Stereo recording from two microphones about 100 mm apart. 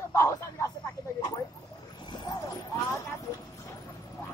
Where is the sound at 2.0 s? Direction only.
45° left (ahead or behind).